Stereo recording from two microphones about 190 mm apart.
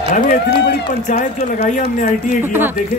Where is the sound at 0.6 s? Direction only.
65° left (ahead or behind).